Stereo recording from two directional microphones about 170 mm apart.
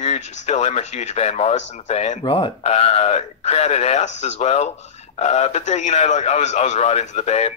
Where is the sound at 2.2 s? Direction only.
30° left (ahead or behind).